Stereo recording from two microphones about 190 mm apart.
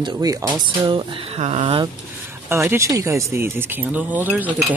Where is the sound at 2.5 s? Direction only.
15° right (ahead or behind).